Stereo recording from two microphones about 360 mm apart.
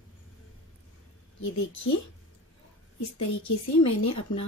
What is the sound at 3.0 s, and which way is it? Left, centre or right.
Speech, left.